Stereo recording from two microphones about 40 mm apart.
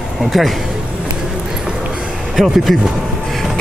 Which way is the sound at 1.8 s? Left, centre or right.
Right.